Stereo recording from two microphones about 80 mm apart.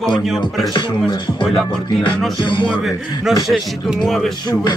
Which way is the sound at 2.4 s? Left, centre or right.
Left.